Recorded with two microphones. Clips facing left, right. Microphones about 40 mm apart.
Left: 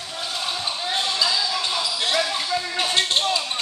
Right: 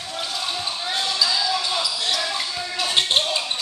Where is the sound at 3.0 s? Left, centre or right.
Centre.